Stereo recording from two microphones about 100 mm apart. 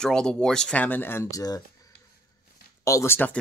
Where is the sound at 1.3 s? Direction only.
40° left (ahead or behind).